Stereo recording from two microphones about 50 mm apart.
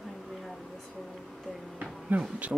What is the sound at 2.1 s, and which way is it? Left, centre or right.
Speech, right.